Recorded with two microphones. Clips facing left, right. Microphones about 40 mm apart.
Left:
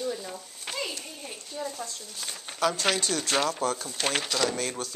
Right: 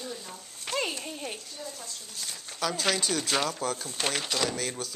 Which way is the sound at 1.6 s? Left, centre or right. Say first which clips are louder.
Left 8 dB; left.